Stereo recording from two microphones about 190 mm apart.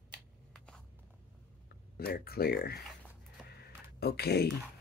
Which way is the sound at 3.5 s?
55° left (ahead or behind).